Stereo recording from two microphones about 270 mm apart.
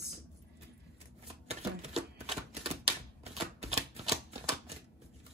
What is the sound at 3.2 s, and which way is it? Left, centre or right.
Typewriter, right.